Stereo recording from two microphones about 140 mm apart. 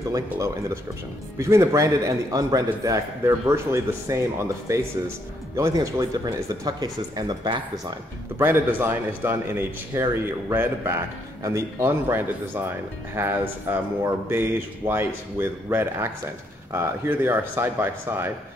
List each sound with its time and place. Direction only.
1.4 s a man's voice: 20° right (ahead or behind)
8.4 s speech: 15° right (ahead or behind)